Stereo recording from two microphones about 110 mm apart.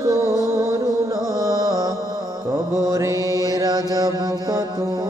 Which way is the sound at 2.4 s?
30° right (ahead or behind).